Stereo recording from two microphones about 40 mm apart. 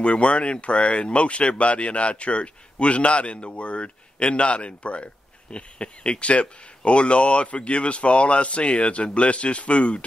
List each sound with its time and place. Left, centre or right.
0.0 s speech: left